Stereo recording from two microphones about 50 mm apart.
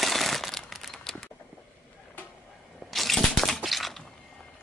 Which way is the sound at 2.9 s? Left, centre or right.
Centre.